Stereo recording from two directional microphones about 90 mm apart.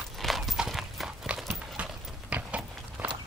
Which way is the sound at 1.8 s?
15° right (ahead or behind).